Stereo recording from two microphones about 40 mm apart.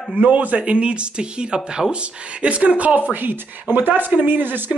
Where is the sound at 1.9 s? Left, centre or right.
Right.